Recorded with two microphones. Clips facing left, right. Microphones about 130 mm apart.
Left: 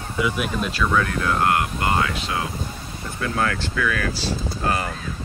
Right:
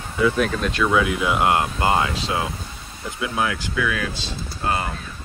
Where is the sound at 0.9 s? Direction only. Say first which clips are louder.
Right 1 dB; 10° right (ahead or behind); by 2.5 s 25° right (ahead or behind).